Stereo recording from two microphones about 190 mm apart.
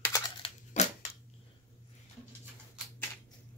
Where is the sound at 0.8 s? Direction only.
40° left (ahead or behind).